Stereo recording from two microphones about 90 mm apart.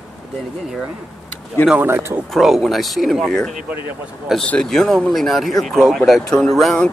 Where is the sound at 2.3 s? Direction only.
Centre (ahead or behind).